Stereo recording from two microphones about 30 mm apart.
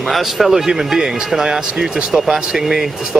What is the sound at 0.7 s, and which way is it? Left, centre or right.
Speech, right.